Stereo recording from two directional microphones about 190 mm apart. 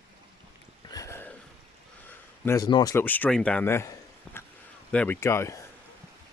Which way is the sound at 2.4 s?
15° left (ahead or behind).